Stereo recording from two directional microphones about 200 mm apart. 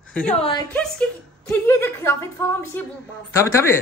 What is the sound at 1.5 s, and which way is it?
A woman's voice, 10° left (ahead or behind).